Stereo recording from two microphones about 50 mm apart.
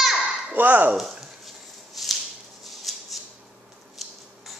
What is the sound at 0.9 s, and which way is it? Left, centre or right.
Speech, centre.